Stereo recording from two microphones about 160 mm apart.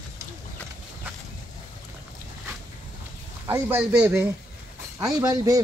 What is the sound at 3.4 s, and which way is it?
Speech, 15° right (ahead or behind).